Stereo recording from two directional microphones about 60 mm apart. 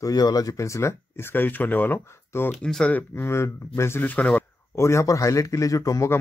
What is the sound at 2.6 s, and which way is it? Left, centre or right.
Speech, centre.